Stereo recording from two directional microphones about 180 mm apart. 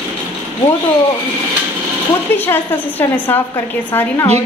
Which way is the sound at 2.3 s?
10° left (ahead or behind).